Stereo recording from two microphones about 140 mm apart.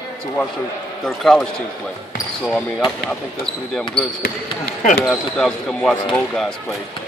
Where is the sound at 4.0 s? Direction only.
40° left (ahead or behind).